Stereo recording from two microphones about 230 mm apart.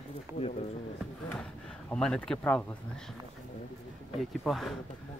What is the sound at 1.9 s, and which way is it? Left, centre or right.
Speech, centre.